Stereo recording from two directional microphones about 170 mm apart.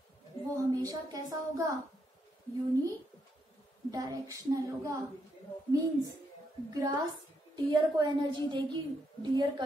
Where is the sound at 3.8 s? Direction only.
20° right (ahead or behind).